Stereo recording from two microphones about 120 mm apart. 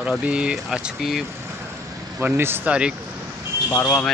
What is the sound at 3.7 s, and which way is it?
Speech, 20° left (ahead or behind).